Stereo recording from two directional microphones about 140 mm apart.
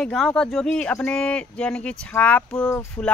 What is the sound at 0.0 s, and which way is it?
Speech, 5° left (ahead or behind).